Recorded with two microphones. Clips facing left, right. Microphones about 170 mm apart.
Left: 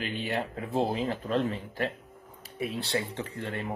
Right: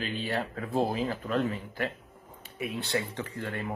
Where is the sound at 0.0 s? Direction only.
25° left (ahead or behind).